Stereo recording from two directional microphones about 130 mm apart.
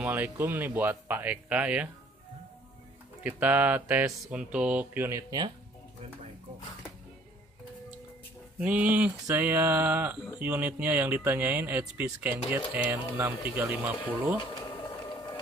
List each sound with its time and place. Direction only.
0.0 s speech: 15° right (ahead or behind)
3.3 s speech: 10° right (ahead or behind)
8.5 s speech: 10° right (ahead or behind)
14.8 s printer: 35° left (ahead or behind)